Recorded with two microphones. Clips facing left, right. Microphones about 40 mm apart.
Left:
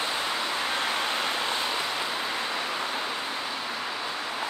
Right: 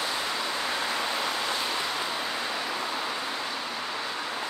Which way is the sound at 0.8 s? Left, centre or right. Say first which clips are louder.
Left 1 dB; left.